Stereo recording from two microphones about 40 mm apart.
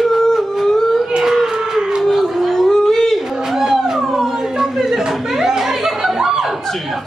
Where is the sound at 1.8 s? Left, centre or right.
Right.